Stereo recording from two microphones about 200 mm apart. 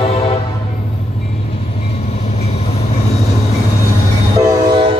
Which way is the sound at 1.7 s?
30° left (ahead or behind).